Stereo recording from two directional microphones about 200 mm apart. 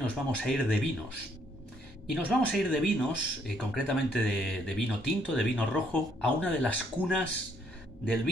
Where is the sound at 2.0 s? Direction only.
Centre (ahead or behind).